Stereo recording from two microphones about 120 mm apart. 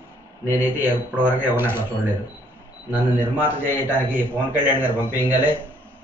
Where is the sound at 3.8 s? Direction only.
15° right (ahead or behind).